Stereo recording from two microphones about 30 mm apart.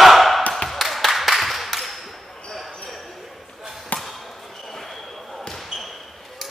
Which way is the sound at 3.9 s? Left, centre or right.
Left.